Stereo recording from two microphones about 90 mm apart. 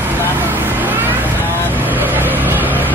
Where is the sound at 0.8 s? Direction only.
20° right (ahead or behind).